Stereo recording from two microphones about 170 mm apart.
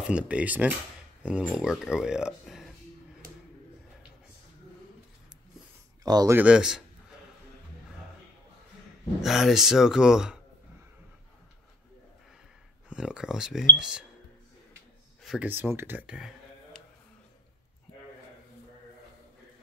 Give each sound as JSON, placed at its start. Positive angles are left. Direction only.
{"t": 0.0, "sound": "speech", "side_deg": -5}
{"t": 3.2, "sound": "a sound", "side_deg": -55}
{"t": 6.0, "sound": "speech", "side_deg": -25}
{"t": 6.3, "sound": "speech", "side_deg": -5}
{"t": 9.2, "sound": "speech", "side_deg": 0}
{"t": 12.9, "sound": "speech", "side_deg": -5}
{"t": 15.2, "sound": "speech", "side_deg": -10}